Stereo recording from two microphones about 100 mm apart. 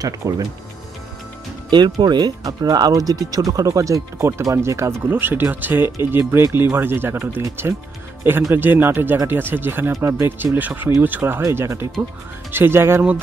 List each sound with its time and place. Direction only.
0.0 s speech: 40° right (ahead or behind)
1.7 s speech: 50° right (ahead or behind); by 4.9 s 30° right (ahead or behind)
5.2 s speech: 20° right (ahead or behind)